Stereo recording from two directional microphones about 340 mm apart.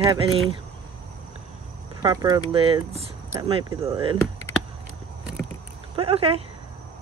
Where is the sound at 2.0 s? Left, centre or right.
Centre.